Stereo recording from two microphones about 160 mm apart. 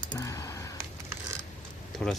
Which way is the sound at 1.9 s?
Centre (ahead or behind).